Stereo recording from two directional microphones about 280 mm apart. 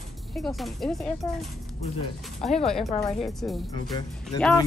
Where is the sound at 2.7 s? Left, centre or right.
Centre.